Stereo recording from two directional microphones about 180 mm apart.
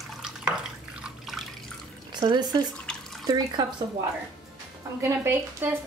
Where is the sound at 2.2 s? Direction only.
25° right (ahead or behind).